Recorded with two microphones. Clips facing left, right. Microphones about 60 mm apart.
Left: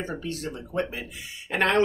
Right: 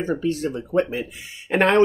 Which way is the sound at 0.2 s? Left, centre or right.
Right.